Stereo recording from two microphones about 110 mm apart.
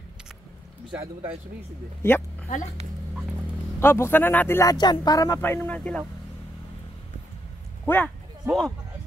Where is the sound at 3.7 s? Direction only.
25° left (ahead or behind).